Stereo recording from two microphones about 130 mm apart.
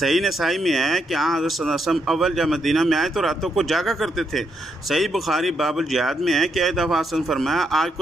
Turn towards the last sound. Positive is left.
turn(degrees=0)  # may be behind; listen again after turning